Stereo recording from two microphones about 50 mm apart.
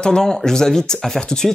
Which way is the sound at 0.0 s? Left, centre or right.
Centre.